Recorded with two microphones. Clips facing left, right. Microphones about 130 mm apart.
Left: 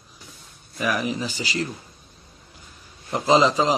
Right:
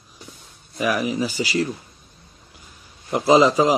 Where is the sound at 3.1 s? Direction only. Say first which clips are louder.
Right 3 dB; 10° right (ahead or behind).